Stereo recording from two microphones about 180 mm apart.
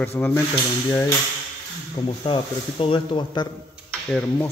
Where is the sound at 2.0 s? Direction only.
30° left (ahead or behind).